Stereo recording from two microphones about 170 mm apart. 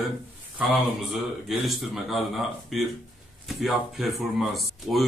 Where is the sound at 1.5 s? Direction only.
Centre (ahead or behind).